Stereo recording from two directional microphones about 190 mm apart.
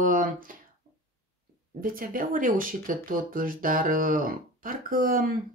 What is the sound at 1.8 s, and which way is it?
Speech, 45° right (ahead or behind).